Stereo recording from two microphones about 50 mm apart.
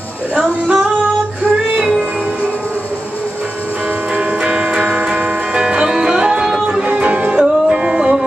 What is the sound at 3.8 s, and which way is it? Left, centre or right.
Music, right.